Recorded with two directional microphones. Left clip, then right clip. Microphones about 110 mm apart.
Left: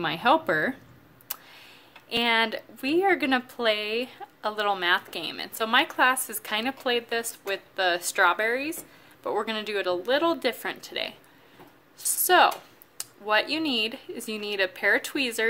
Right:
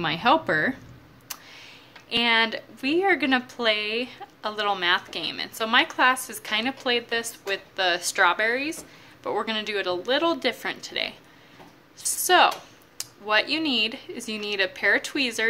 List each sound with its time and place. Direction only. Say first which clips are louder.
0.0 s speech: right 1 dB; 25° left (ahead or behind)
12.2 s speech: right 1 dB; 40° left (ahead or behind)